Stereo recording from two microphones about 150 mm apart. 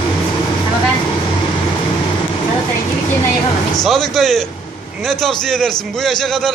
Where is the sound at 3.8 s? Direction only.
Centre (ahead or behind).